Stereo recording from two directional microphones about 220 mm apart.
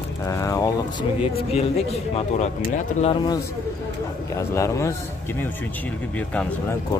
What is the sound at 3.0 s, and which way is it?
A man's voice, 20° left (ahead or behind).